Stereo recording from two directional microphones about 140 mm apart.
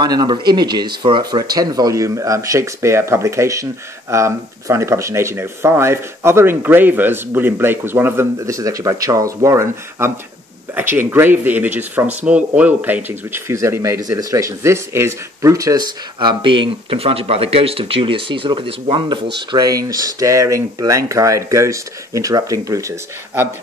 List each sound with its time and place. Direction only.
0.0 s speech: 30° right (ahead or behind)